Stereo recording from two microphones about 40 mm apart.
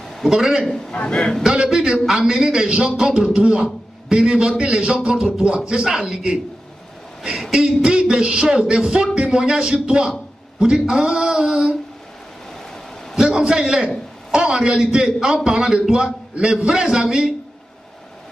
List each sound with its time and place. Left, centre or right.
0.3 s a man's voice: centre
0.7 s a man's voice: centre
1.4 s a man's voice: centre
5.7 s music: right
5.9 s a man's voice: centre
7.5 s a man's voice: centre
8.9 s music: right
9.3 s a man's voice: centre
10.6 s music: centre
11.0 s a sound: centre
13.1 s a man's voice: centre